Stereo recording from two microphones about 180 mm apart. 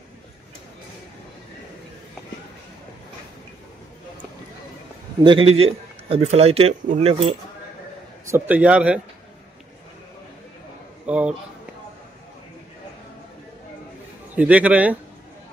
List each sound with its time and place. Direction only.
5.2 s a man's voice: 30° right (ahead or behind)
8.3 s a man's voice: 10° right (ahead or behind)
11.1 s a man's voice: 5° right (ahead or behind)
14.3 s a man's voice: 10° right (ahead or behind)